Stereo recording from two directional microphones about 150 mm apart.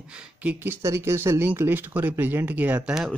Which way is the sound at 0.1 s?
10° right (ahead or behind).